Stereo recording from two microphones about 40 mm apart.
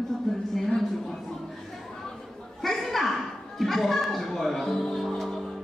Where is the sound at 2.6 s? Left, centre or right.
Centre.